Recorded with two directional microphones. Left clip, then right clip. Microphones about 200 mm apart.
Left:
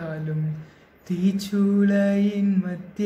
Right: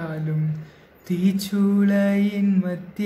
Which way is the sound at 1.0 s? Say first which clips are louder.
Right 2 dB; 15° right (ahead or behind).